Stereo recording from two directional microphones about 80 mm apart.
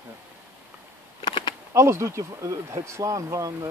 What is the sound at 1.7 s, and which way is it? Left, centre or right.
Speech, right.